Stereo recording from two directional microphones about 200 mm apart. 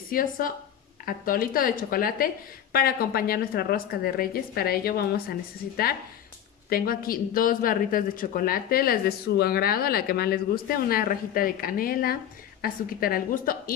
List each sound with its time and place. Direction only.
0.1 s a woman's voice: 45° left (ahead or behind)
6.7 s a woman's voice: 45° left (ahead or behind)